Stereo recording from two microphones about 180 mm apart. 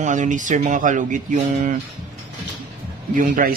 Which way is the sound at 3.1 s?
50° right (ahead or behind).